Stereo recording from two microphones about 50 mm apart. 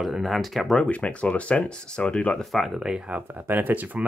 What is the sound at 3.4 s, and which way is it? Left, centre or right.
Speech, right.